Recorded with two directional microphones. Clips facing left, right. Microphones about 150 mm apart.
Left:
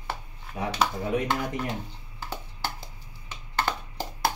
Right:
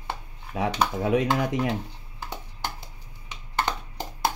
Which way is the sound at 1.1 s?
90° right.